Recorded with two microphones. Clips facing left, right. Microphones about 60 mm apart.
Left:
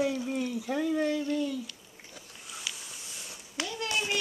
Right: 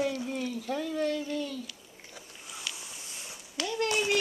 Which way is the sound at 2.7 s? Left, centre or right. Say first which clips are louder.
Even; centre.